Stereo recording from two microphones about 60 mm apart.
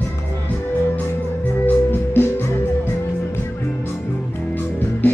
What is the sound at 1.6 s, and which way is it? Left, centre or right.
Music, left.